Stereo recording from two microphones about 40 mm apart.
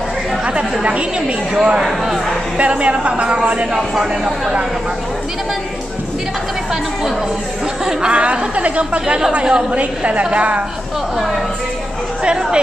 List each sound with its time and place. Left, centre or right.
1.5 s speech: centre
2.5 s a woman's voice: right
3.7 s speech: centre
7.8 s a woman's voice: centre
8.2 s a woman's voice: right
9.3 s a woman's voice: right
9.7 s a woman's voice: right
12.2 s speech: right